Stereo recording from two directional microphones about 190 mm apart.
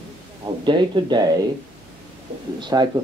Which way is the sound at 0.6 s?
25° right (ahead or behind).